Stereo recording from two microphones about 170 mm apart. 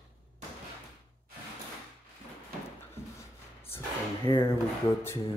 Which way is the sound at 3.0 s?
15° left (ahead or behind).